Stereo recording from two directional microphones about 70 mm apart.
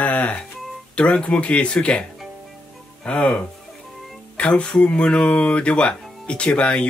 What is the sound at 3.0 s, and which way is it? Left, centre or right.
Speech, centre.